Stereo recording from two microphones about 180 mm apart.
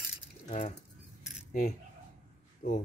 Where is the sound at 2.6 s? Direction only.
45° left (ahead or behind).